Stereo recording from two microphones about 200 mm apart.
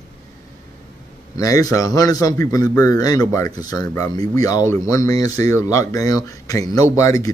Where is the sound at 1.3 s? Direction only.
15° left (ahead or behind).